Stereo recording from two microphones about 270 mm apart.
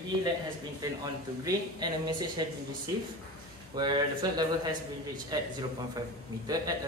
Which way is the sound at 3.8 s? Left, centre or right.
Centre.